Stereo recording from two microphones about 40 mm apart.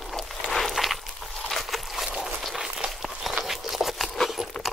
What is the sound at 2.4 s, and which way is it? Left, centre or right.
Run, centre.